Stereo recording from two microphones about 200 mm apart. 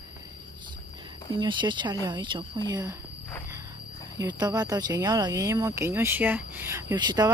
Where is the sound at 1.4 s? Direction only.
25° right (ahead or behind).